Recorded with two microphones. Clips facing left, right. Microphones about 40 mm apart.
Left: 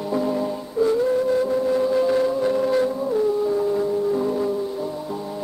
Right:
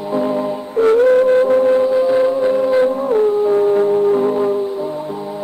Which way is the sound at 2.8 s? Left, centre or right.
Right.